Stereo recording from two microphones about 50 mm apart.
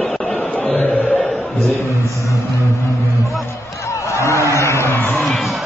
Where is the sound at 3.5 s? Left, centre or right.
Left.